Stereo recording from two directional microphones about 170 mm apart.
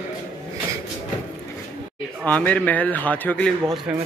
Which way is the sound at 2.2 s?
10° left (ahead or behind).